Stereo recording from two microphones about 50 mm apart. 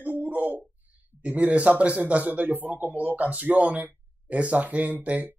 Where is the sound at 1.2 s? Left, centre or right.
Right.